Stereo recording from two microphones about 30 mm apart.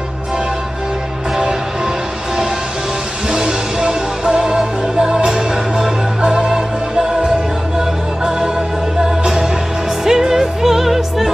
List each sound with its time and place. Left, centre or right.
3.3 s music: centre
8.2 s music: centre